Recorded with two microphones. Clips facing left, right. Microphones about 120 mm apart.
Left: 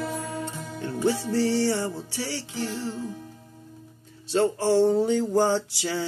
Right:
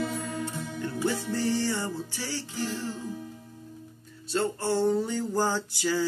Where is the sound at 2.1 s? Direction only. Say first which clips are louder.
Left 3 dB; 75° left (ahead or behind).